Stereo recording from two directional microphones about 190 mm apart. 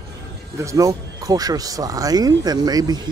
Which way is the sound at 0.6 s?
15° right (ahead or behind).